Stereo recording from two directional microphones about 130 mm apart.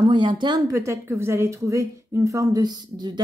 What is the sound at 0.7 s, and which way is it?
A woman's voice, 20° right (ahead or behind).